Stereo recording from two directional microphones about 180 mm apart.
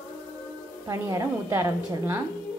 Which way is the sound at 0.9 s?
15° right (ahead or behind).